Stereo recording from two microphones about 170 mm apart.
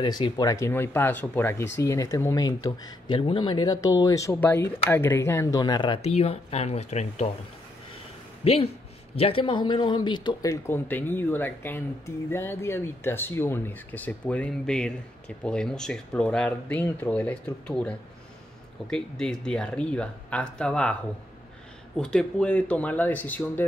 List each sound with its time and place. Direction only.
0.0 s speech: 25° left (ahead or behind); by 7.2 s 40° left (ahead or behind)
8.4 s speech: 35° left (ahead or behind); by 20.9 s 5° left (ahead or behind)
21.9 s speech: 5° left (ahead or behind)